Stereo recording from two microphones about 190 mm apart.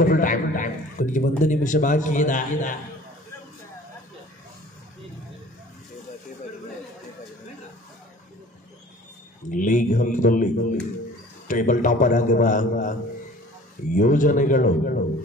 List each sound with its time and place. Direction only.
0.0 s a man's voice: 45° left (ahead or behind)
9.5 s a man's voice: 45° left (ahead or behind)
13.9 s a man's voice: 45° left (ahead or behind)